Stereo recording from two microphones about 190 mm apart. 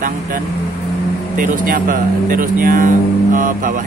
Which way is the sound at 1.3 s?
45° right (ahead or behind).